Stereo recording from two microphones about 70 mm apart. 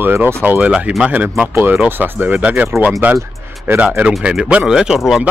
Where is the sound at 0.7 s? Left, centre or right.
Centre.